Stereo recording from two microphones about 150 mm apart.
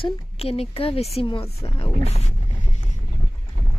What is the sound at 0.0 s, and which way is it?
Speech, 40° left (ahead or behind).